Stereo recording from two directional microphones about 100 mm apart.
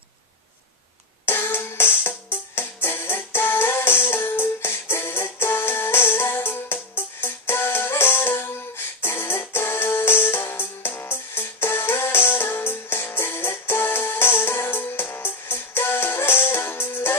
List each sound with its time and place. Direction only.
1.2 s music: 25° left (ahead or behind)